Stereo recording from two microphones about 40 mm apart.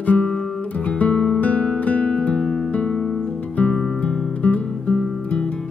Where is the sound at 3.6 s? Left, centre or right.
Left.